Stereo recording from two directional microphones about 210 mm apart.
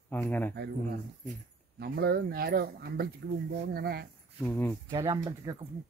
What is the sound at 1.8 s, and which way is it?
Speech, 50° right (ahead or behind).